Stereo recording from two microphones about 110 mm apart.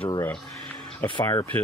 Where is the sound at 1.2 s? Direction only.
35° left (ahead or behind).